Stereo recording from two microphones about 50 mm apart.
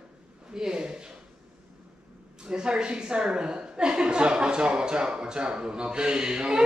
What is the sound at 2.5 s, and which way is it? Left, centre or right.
A woman's voice, centre.